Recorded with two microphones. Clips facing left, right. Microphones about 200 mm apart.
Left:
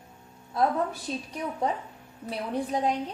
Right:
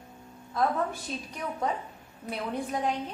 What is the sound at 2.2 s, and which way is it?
Speech, 35° left (ahead or behind).